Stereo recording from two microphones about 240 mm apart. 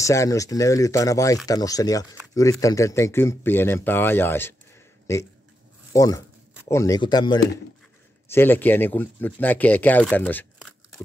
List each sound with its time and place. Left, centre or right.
0.0 s speech: centre
5.9 s speech: centre